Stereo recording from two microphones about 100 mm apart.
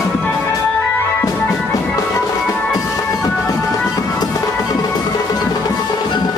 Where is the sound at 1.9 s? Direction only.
30° left (ahead or behind).